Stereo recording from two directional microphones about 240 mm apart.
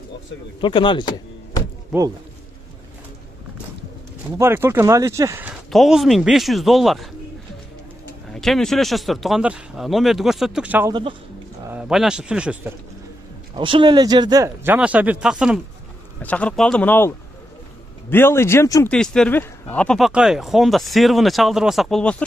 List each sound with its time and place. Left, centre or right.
0.6 s speech: centre
1.9 s speech: centre
4.4 s speech: centre
8.3 s speech: centre
10.9 s speech: centre
11.7 s speech: centre
13.6 s speech: right; by 17.1 s centre
18.1 s speech: centre